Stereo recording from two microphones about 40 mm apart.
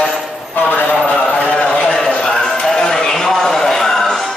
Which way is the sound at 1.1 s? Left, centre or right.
Left.